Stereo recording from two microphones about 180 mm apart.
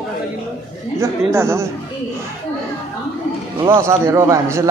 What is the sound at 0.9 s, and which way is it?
Speech, 15° right (ahead or behind).